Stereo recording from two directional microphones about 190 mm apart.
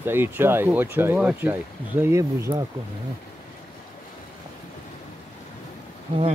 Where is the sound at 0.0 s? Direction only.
10° right (ahead or behind).